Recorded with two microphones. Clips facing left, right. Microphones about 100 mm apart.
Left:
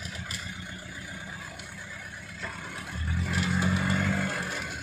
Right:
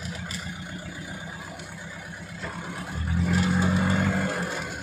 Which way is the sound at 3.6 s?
25° right (ahead or behind).